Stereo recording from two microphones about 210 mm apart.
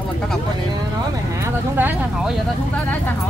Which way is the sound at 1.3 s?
10° right (ahead or behind).